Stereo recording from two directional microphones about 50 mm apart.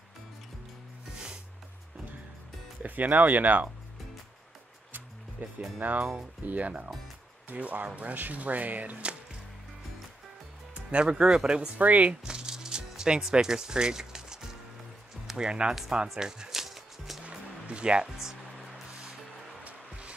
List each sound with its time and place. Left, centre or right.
1.1 s music: centre
2.8 s speech: right
5.4 s speech: right
10.7 s speech: right
11.8 s speech: right
12.1 s music: centre
15.3 s speech: centre
15.7 s speech: centre
16.2 s music: centre
17.3 s music: centre